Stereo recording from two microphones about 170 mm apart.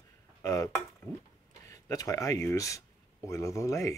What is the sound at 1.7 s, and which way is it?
Speech, 20° left (ahead or behind).